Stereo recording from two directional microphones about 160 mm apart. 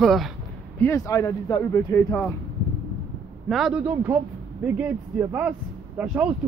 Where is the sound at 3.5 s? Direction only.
Centre (ahead or behind).